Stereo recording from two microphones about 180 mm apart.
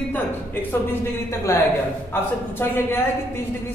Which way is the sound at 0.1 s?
10° left (ahead or behind).